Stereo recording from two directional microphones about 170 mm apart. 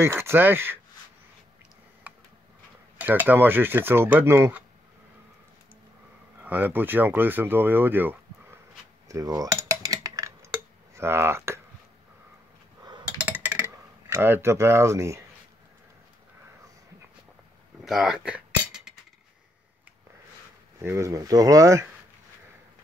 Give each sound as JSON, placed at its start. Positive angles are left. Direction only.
{"t": 0.0, "sound": "speech", "side_deg": -15}
{"t": 3.0, "sound": "speech", "side_deg": -10}
{"t": 6.4, "sound": "speech", "side_deg": -10}
{"t": 9.1, "sound": "cutlery", "side_deg": -20}
{"t": 11.0, "sound": "speech", "side_deg": -15}
{"t": 13.2, "sound": "a sound", "side_deg": -10}
{"t": 14.0, "sound": "speech", "side_deg": -15}
{"t": 17.8, "sound": "cutlery", "side_deg": 0}
{"t": 20.8, "sound": "speech", "side_deg": -15}